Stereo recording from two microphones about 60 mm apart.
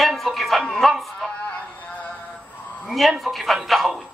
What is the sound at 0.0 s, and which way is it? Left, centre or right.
Music, centre.